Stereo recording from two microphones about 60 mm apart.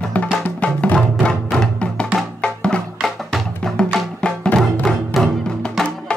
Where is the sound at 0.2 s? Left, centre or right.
Left.